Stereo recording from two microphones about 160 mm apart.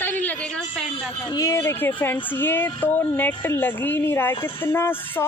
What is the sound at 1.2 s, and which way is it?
A woman's voice, 20° left (ahead or behind).